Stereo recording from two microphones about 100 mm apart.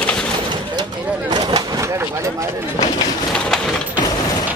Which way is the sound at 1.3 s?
40° right (ahead or behind).